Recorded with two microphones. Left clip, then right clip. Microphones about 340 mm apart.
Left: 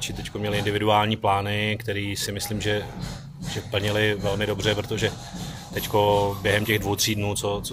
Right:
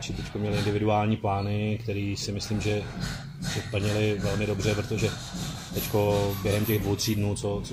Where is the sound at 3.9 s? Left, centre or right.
Left.